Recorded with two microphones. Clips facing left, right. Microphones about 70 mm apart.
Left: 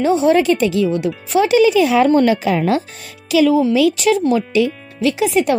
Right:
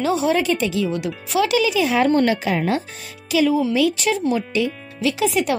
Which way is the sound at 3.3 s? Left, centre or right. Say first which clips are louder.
Left 5 dB; left.